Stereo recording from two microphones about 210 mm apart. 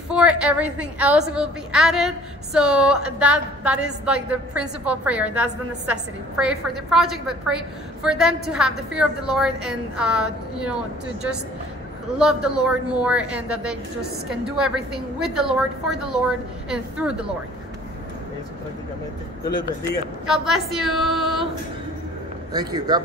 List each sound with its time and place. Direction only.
0.1 s a woman's voice: 5° right (ahead or behind)
12.2 s a woman's voice: 5° right (ahead or behind)
20.2 s a woman's voice: centre (ahead or behind)
22.5 s a man's voice: 20° right (ahead or behind)